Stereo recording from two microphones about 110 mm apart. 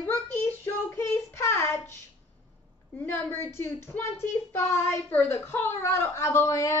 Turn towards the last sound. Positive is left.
turn(degrees=25)  # may be behind; listen again after turning